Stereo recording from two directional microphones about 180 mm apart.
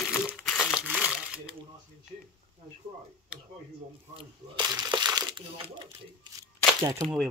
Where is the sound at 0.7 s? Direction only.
5° right (ahead or behind).